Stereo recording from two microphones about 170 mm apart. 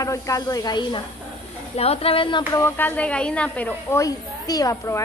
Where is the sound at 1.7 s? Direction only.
35° left (ahead or behind).